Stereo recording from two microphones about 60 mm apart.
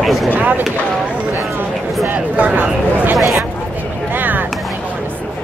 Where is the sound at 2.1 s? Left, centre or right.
Right.